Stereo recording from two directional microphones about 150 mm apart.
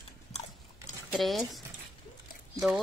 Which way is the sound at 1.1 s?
Centre (ahead or behind).